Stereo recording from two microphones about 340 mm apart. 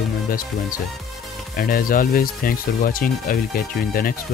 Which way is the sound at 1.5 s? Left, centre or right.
Left.